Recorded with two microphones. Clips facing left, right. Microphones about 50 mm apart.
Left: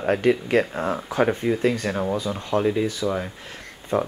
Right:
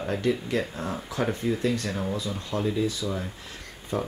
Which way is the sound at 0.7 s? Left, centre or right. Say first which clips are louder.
Left 7 dB; left.